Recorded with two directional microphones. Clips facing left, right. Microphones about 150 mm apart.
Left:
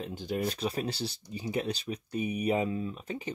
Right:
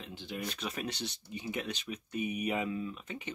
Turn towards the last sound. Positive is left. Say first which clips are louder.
# left 4 dB
turn(degrees=35)  # may be behind; listen again after turning